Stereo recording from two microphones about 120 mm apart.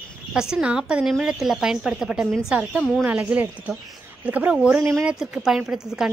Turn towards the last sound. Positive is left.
turn(degrees=-5)  # may be behind; listen again after turning